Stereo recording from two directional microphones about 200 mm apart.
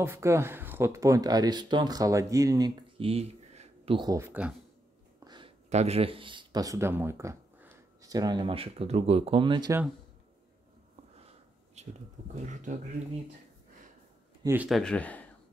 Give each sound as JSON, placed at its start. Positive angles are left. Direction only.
{"t": 0.0, "sound": "speech", "side_deg": -15}
{"t": 5.2, "sound": "a sound", "side_deg": -20}
{"t": 5.7, "sound": "speech", "side_deg": -30}
{"t": 11.1, "sound": "a sound", "side_deg": -30}
{"t": 14.4, "sound": "speech", "side_deg": -10}
{"t": 14.8, "sound": "speech", "side_deg": 5}